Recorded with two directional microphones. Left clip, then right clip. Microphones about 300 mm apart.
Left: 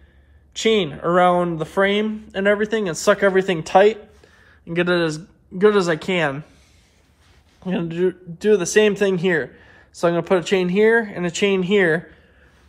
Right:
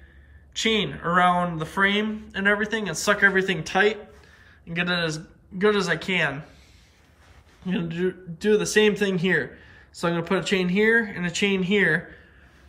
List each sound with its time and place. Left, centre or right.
0.6 s speech: centre
7.6 s speech: centre